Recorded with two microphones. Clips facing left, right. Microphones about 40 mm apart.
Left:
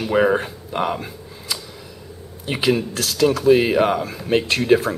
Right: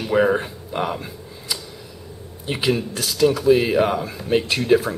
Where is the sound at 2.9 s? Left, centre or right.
Centre.